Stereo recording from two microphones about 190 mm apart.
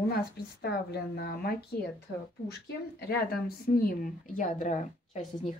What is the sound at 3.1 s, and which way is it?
A woman's voice, 55° left (ahead or behind).